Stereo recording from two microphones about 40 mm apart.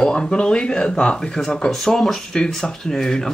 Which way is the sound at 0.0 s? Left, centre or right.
Left.